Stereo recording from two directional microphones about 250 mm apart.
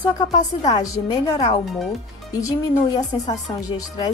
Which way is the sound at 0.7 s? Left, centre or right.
Centre.